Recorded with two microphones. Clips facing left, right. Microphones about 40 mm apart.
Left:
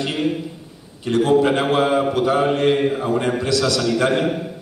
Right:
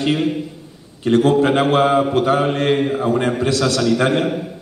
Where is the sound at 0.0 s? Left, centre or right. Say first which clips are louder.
Right 3 dB; centre.